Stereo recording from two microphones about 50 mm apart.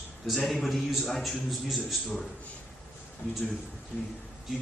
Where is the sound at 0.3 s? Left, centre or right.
Centre.